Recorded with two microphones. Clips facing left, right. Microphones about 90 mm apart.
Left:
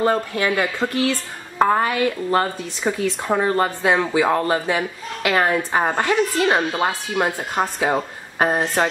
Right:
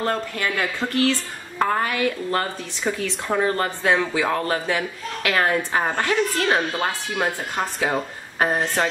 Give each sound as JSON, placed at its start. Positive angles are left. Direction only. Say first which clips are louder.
{"t": 0.0, "sound": "speech", "louder": "left 5 dB", "side_deg": 15}